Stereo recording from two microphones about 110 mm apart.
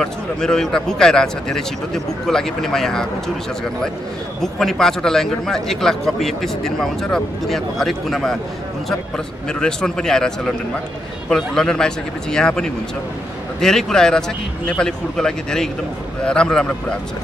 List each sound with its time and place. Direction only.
0.0 s a man's voice: 5° left (ahead or behind)
4.4 s a man's voice: 5° left (ahead or behind)
9.5 s a man's voice: 5° left (ahead or behind)